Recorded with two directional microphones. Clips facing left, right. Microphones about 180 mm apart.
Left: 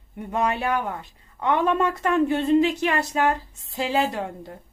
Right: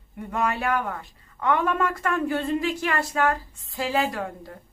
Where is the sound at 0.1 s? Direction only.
20° left (ahead or behind).